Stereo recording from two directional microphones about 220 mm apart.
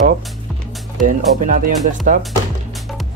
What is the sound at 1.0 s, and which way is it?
Speech, 35° right (ahead or behind).